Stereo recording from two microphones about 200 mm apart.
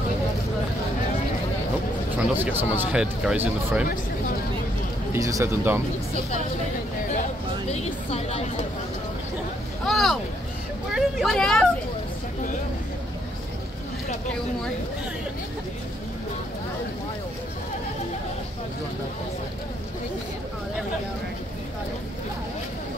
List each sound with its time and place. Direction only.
2.1 s speech: 10° right (ahead or behind)
5.1 s speech: 15° right (ahead or behind)
7.7 s speech: 30° left (ahead or behind)
9.8 s vehicle: centre (ahead or behind)
10.9 s speech: centre (ahead or behind)